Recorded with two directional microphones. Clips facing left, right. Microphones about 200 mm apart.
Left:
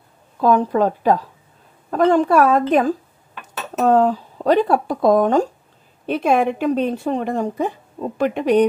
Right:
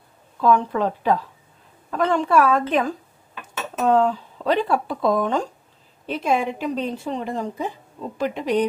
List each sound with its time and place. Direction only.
0.4 s speech: 40° left (ahead or behind)
6.0 s speech: 60° left (ahead or behind)